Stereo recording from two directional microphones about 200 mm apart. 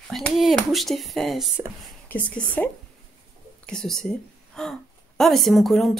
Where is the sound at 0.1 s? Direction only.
Centre (ahead or behind).